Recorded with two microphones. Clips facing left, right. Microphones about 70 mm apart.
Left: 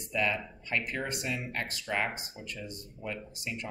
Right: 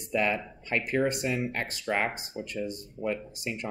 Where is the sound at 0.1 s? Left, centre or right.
Right.